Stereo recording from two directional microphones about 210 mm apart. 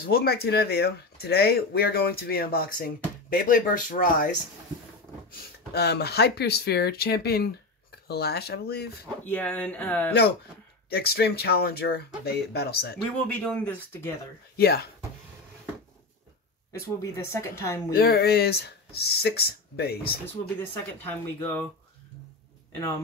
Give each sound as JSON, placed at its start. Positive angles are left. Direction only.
{"t": 0.0, "sound": "speech", "side_deg": 45}
{"t": 5.7, "sound": "speech", "side_deg": 50}
{"t": 9.2, "sound": "speech", "side_deg": 5}
{"t": 10.9, "sound": "speech", "side_deg": 50}
{"t": 13.0, "sound": "speech", "side_deg": 5}
{"t": 14.6, "sound": "speech", "side_deg": 50}
{"t": 17.0, "sound": "speech", "side_deg": 10}
{"t": 17.9, "sound": "speech", "side_deg": 50}
{"t": 20.5, "sound": "speech", "side_deg": 10}